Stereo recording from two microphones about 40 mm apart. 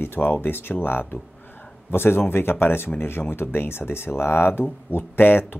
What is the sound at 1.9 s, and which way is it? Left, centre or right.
Speech, left.